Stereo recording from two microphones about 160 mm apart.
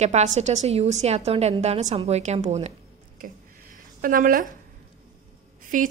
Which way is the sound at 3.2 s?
60° right (ahead or behind).